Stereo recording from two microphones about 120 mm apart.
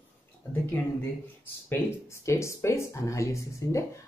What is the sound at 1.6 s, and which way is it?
Speech, 25° left (ahead or behind).